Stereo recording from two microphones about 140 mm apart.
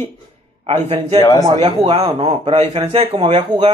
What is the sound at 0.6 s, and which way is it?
Speech, 45° right (ahead or behind).